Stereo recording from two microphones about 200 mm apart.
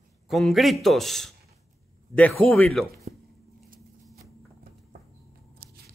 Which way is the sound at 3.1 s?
35° right (ahead or behind).